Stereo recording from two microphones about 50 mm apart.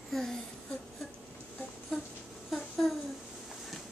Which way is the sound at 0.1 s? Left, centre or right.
Centre.